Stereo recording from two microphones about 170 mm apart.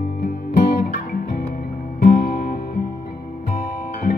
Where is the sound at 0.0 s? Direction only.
60° left (ahead or behind).